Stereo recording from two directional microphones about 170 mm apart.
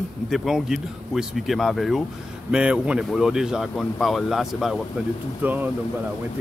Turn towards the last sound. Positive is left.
turn(degrees=-10)  # may be behind; listen again after turning